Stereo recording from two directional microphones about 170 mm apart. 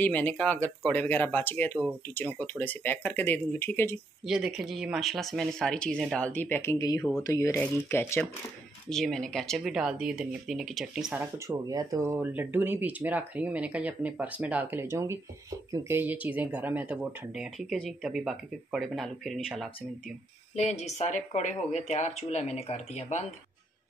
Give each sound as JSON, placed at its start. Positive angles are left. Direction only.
{"t": 0.0, "sound": "speech", "side_deg": 10}
{"t": 4.3, "sound": "speech", "side_deg": -5}
{"t": 8.8, "sound": "speech", "side_deg": 0}
{"t": 11.3, "sound": "speech", "side_deg": -20}
{"t": 20.6, "sound": "speech", "side_deg": 40}